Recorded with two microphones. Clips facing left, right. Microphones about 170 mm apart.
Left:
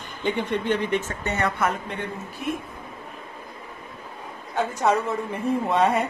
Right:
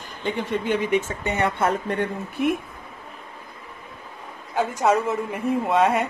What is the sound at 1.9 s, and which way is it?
Speech, 55° right (ahead or behind).